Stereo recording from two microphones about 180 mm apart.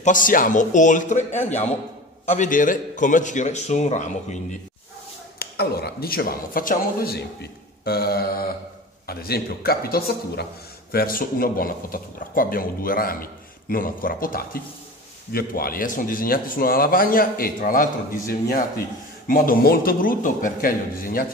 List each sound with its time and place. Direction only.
0.0 s a man's voice: 45° left (ahead or behind)
5.4 s a man's voice: 60° left (ahead or behind)